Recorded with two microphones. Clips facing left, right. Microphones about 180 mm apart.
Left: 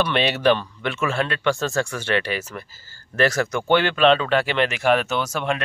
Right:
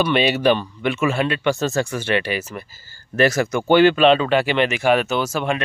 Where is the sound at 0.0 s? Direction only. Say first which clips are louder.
Right 2 dB; 5° right (ahead or behind).